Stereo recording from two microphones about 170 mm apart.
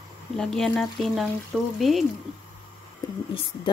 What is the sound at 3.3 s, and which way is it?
Speech, 30° left (ahead or behind).